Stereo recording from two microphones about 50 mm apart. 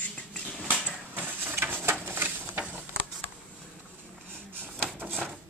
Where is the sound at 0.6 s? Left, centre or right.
Left.